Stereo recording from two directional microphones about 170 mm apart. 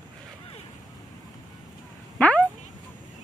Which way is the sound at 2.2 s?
10° left (ahead or behind).